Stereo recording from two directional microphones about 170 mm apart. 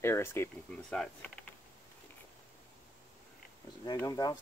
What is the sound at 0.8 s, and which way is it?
Speech, 5° left (ahead or behind).